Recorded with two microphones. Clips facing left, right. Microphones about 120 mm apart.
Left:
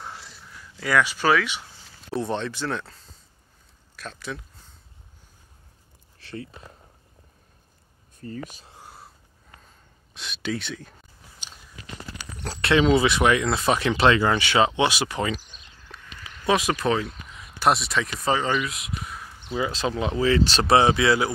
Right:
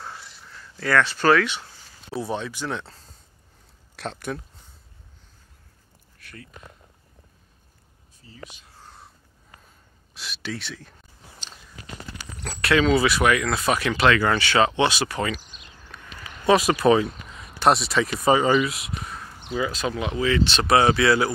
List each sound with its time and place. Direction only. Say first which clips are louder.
0.5 s speech: right 2 dB; 15° left (ahead or behind)
2.0 s speech: left 2 dB; 5° right (ahead or behind)
3.9 s speech: right 6 dB; 70° right (ahead or behind)
6.1 s a sound: left 9 dB; 25° left (ahead or behind)
8.2 s speech: left 8 dB; 55° left (ahead or behind)
8.8 s a sound: left 1 dB; 5° left (ahead or behind)
10.1 s speech: left 4 dB; centre (ahead or behind)
12.4 s speech: left 1 dB; 25° left (ahead or behind)
15.9 s a sound: even; 25° left (ahead or behind)
16.4 s speech: right 5 dB; centre (ahead or behind)
19.5 s speech: even; 25° left (ahead or behind)
20.7 s speech: even; 20° left (ahead or behind)